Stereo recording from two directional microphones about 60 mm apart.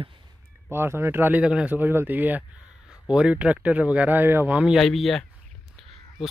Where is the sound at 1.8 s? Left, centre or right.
Right.